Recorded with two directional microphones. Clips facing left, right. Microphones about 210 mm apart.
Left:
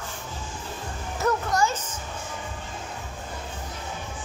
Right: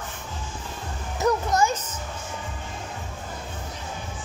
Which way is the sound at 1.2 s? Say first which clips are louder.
Right 2 dB; 20° right (ahead or behind).